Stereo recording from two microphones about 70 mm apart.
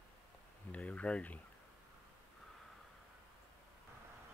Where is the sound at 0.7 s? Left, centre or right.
Centre.